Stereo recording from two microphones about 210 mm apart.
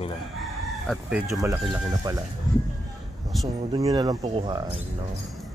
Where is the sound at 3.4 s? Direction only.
15° right (ahead or behind).